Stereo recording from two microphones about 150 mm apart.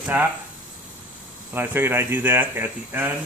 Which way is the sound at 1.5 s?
15° right (ahead or behind).